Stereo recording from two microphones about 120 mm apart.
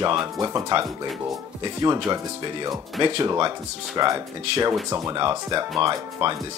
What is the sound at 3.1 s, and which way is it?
Speech, 40° right (ahead or behind).